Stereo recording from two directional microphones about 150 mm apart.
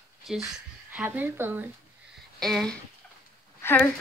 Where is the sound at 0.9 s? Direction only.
10° right (ahead or behind).